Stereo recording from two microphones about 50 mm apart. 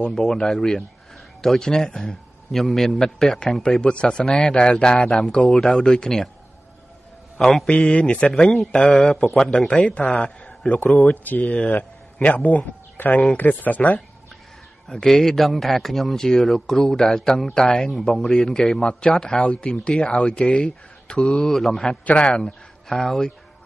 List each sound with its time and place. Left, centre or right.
0.0 s a man's voice: centre
4.2 s a man's voice: centre
7.3 s a man's voice: centre
7.7 s a man's voice: left
9.4 s a man's voice: centre
9.7 s a man's voice: left
12.9 s speech: left
14.9 s a man's voice: centre
18.8 s a man's voice: left
22.0 s a man's voice: left
22.4 s speech: centre